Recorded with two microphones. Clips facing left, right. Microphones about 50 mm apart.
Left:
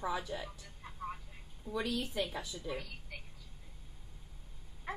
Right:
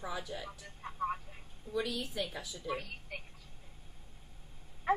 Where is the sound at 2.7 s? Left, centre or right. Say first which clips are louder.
Right 3 dB; right.